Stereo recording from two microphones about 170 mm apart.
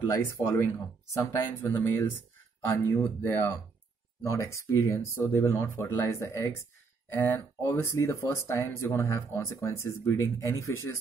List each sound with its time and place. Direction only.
0.1 s speech: 20° left (ahead or behind)